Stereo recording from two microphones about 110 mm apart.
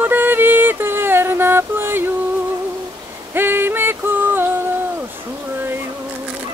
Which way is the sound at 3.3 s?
20° right (ahead or behind).